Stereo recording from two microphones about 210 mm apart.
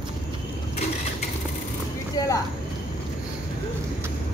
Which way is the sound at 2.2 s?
15° left (ahead or behind).